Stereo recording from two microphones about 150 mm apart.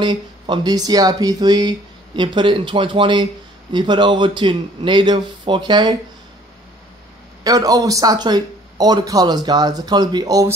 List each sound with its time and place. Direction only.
0.0 s speech: 30° right (ahead or behind)
7.4 s speech: 25° right (ahead or behind)